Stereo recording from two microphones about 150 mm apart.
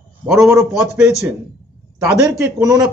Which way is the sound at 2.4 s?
20° right (ahead or behind).